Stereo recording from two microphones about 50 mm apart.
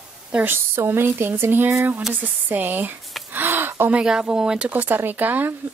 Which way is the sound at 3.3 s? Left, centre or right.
Right.